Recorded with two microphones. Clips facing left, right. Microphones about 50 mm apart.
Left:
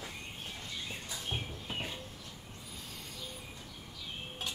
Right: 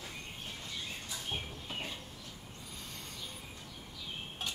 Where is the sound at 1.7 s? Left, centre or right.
Centre.